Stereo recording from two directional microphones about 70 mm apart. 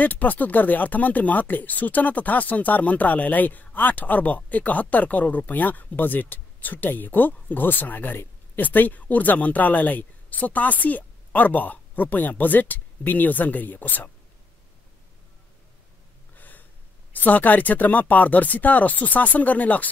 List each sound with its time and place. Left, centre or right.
0.0 s speech: left
16.3 s gasp: left
17.1 s speech: left